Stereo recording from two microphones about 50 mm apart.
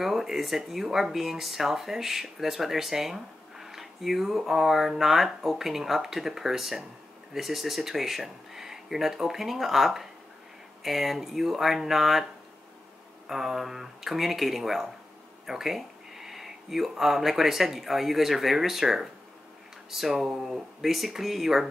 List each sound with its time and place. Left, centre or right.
0.0 s speech: centre
13.3 s speech: centre